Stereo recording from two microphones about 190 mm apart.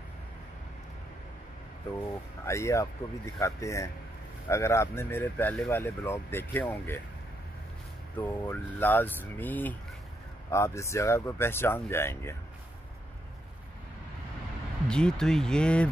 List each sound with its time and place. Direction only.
2.4 s speech: 15° left (ahead or behind)
8.2 s speech: 10° left (ahead or behind)
14.9 s speech: 5° left (ahead or behind)